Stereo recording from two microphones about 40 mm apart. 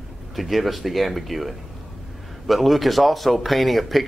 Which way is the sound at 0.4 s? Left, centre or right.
Centre.